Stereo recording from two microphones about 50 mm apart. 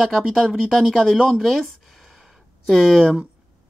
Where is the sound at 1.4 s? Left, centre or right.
Centre.